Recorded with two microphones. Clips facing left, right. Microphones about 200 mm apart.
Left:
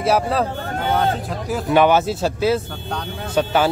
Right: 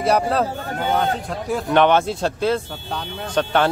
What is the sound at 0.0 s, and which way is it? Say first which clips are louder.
Speech: even; centre (ahead or behind).